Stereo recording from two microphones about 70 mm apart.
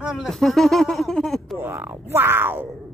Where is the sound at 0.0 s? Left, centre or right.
Centre.